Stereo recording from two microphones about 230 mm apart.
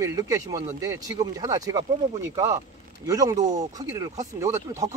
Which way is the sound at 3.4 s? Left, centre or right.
Right.